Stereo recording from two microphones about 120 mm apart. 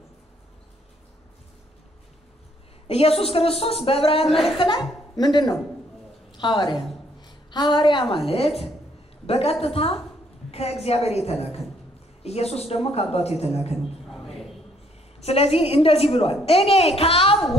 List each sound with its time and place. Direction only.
2.9 s a woman's voice: 55° left (ahead or behind)
4.3 s a woman's voice: centre (ahead or behind)
4.6 s a woman's voice: 40° left (ahead or behind)
7.2 s a sound: 40° left (ahead or behind)
8.3 s a woman's voice: 55° left (ahead or behind)
14.0 s a sound: centre (ahead or behind)
15.1 s a woman's voice: 55° left (ahead or behind)